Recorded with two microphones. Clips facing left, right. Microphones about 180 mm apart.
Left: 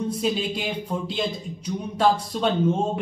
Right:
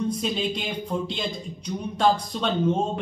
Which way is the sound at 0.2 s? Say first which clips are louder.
Left 2 dB; 5° left (ahead or behind).